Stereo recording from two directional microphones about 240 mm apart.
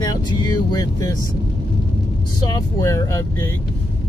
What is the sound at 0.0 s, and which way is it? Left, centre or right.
Vehicle, centre.